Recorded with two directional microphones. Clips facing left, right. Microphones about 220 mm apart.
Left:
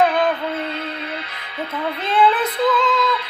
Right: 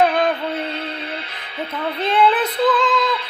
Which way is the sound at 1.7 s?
5° left (ahead or behind).